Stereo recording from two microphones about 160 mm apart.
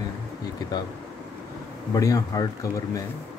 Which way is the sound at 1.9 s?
20° left (ahead or behind).